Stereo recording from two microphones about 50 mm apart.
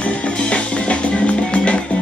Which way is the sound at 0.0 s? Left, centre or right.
Left.